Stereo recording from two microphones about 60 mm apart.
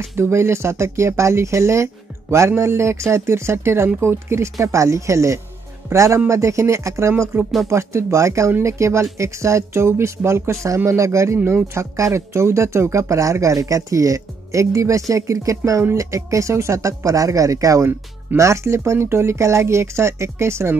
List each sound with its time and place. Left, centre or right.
0.2 s speech: right
17.8 s speech: right